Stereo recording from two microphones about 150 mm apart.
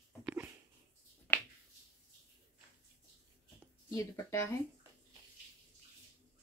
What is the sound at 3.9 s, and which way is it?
Speech, 20° left (ahead or behind).